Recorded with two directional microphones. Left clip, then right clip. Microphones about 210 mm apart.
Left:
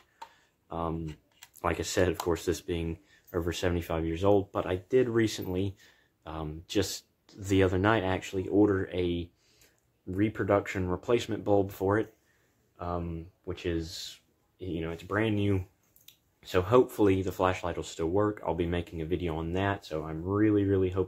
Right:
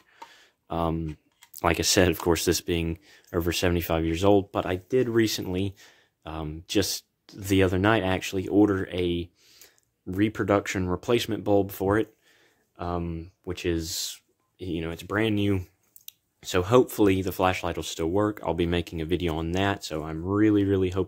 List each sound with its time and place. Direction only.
0.7 s speech: 45° right (ahead or behind)
10.1 s speech: 50° right (ahead or behind)
12.7 s speech: 55° right (ahead or behind)